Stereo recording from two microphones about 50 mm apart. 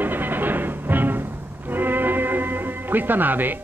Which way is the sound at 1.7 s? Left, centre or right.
Right.